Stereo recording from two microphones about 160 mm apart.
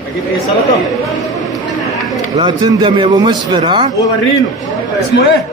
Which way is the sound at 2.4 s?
30° right (ahead or behind).